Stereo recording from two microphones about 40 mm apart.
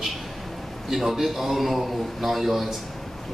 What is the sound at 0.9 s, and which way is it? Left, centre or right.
A man's voice, centre.